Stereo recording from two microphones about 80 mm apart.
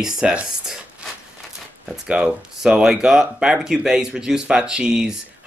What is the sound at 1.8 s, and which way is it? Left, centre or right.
Speech, centre.